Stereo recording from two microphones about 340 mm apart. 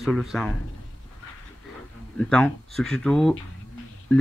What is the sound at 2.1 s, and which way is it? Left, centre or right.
Speech, centre.